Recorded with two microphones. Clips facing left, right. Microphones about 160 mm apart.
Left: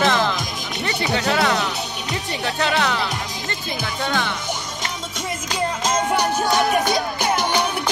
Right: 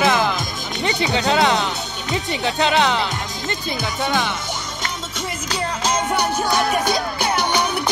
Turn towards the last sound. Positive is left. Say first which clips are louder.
# even
turn(degrees=5)  # may be behind; listen again after turning